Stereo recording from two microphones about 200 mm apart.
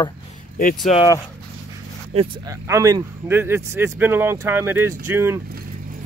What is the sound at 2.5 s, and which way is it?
Speech, 15° right (ahead or behind).